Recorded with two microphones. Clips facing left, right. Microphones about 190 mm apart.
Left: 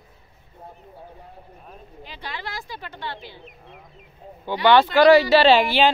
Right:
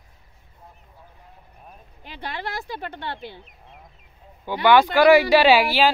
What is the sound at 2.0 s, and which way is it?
Speech, 55° right (ahead or behind).